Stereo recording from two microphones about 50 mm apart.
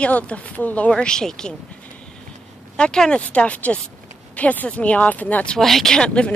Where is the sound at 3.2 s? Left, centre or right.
Left.